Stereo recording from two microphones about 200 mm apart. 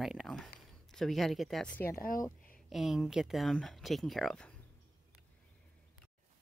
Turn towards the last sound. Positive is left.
turn(degrees=5)  # may be behind; listen again after turning